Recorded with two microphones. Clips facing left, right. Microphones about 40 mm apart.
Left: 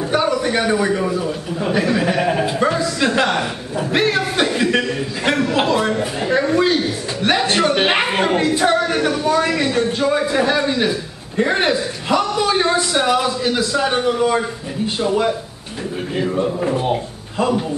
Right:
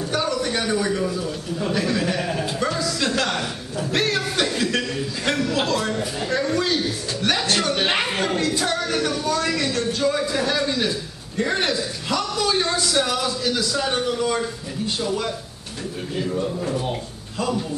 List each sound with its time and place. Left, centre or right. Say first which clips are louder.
0.0 s a man's voice: left 6 dB; left
16.9 s a man's voice: left 8 dB; left